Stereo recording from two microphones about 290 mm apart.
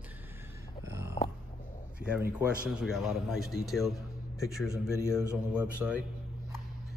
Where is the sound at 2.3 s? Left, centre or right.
Centre.